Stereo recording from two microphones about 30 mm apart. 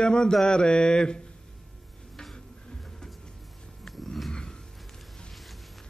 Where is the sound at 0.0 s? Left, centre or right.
Left.